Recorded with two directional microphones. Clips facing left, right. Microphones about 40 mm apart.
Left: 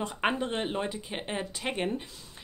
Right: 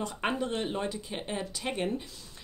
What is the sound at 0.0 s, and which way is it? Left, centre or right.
Speech, left.